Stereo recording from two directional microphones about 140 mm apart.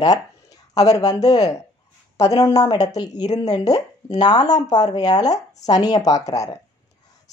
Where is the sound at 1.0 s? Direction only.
25° left (ahead or behind).